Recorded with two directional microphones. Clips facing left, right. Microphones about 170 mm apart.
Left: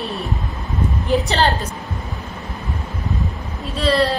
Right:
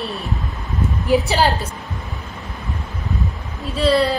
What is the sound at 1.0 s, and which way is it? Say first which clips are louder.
Speech: right 2 dB; 5° right (ahead or behind).